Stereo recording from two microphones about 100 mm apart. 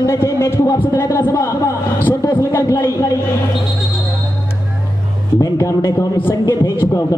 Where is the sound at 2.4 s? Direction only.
30° left (ahead or behind).